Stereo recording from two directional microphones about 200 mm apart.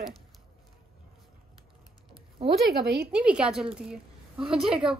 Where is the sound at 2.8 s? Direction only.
50° right (ahead or behind).